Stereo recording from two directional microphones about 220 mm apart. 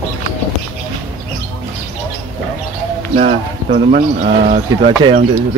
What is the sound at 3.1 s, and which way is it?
Speech, 30° right (ahead or behind).